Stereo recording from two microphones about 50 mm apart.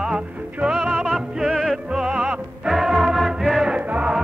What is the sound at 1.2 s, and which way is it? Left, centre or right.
Music, centre.